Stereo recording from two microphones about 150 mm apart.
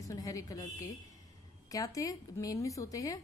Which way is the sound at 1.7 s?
25° left (ahead or behind).